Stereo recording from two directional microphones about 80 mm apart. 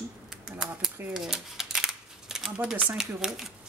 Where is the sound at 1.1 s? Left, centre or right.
Centre.